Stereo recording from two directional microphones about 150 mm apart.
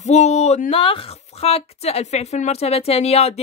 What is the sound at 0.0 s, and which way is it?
Speech, 50° left (ahead or behind).